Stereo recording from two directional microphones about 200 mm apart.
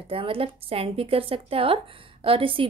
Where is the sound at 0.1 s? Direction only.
25° right (ahead or behind).